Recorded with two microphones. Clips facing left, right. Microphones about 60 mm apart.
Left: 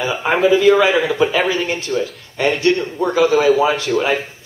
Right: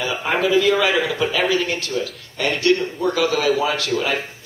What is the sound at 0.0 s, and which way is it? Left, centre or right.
A man's voice, centre.